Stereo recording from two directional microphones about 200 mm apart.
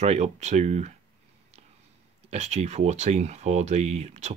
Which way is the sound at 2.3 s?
35° right (ahead or behind).